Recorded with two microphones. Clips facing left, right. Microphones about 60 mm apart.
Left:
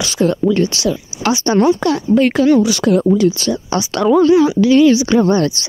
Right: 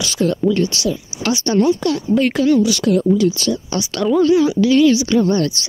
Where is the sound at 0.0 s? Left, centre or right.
Left.